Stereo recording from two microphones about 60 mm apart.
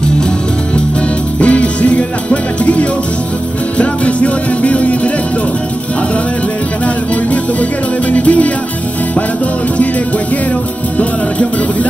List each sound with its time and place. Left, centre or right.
1.4 s music: left
8.1 s music: left